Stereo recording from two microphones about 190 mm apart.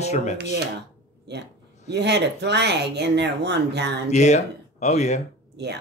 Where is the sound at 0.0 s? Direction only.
35° left (ahead or behind).